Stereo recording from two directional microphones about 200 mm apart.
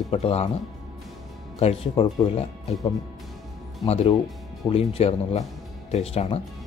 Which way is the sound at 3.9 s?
30° left (ahead or behind).